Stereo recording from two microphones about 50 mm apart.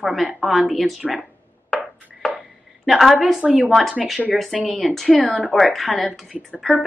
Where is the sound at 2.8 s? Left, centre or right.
Centre.